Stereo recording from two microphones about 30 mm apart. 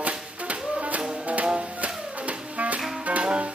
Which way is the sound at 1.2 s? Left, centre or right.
Right.